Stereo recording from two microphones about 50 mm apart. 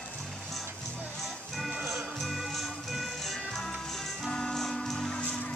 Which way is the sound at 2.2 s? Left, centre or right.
Centre.